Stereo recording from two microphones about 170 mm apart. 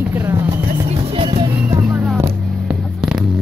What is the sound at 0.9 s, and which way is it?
Speech, 35° right (ahead or behind).